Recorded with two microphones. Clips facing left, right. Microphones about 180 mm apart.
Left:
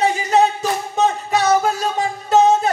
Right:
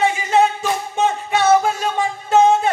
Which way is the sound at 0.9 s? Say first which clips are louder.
Left 2 dB; 40° left (ahead or behind).